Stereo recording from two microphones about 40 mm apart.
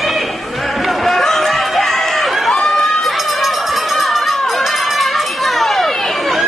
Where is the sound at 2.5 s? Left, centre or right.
Centre.